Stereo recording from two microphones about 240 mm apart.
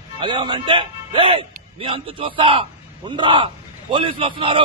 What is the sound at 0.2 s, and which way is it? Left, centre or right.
A man's voice, centre.